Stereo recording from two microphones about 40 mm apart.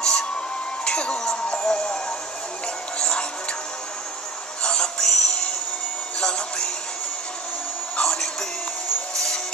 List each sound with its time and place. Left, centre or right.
0.0 s music: centre
4.6 s synthetic singing: centre
6.1 s music: centre
8.0 s music: centre
9.1 s vehicle: centre